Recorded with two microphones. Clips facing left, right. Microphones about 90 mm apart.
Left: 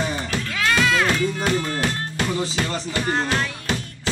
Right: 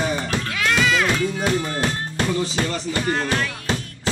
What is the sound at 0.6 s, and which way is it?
Music, centre (ahead or behind).